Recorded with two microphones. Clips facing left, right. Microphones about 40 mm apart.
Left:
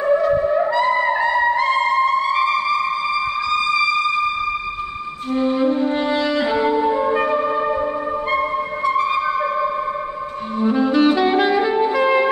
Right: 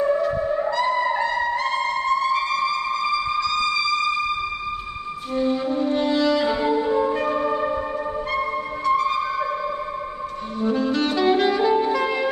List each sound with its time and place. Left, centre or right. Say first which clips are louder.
0.3 s theremin: left 6 dB; left
0.9 s music: left 4 dB; centre
5.3 s music: left 4 dB; left
10.6 s saxophone: left 6 dB; centre